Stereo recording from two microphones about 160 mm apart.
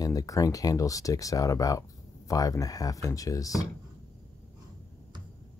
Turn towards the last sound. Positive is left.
turn(degrees=20)  # may be behind; listen again after turning